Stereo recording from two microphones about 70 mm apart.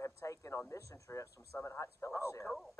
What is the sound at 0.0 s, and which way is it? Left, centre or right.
A man's voice, left.